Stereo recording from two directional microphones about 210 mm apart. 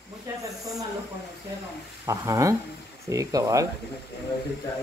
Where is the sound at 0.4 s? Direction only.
15° right (ahead or behind).